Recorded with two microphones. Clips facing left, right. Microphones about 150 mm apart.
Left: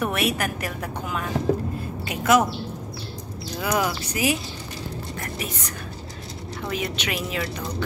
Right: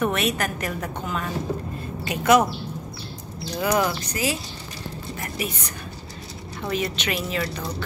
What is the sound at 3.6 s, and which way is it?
Speech, 5° left (ahead or behind).